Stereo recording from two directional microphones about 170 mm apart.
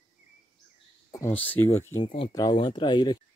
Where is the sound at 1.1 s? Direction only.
15° left (ahead or behind).